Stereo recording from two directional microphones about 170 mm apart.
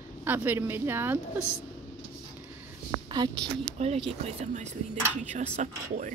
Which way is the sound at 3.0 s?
25° right (ahead or behind).